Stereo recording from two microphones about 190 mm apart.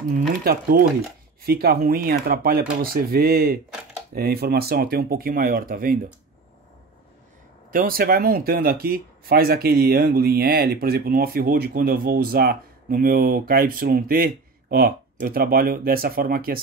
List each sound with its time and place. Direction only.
0.4 s speech: 50° right (ahead or behind)
7.7 s speech: 50° right (ahead or behind)